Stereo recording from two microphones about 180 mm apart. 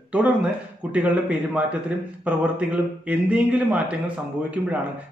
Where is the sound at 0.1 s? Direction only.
5° right (ahead or behind).